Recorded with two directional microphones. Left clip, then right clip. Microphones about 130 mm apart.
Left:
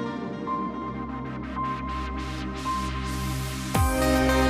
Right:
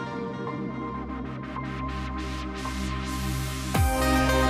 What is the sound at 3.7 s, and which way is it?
Music, centre (ahead or behind).